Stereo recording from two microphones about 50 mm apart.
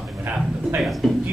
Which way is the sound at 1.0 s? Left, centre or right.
Centre.